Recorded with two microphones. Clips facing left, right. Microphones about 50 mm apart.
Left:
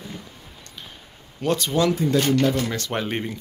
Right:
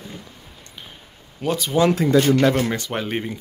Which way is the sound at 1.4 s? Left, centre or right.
Centre.